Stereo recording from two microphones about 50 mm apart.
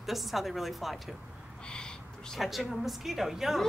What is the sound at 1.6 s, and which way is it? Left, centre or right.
Owl, centre.